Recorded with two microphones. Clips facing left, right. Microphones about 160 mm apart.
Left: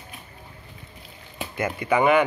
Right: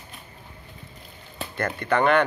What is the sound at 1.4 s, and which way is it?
Speech, 10° left (ahead or behind).